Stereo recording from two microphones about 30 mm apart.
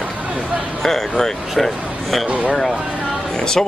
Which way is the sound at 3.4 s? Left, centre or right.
Left.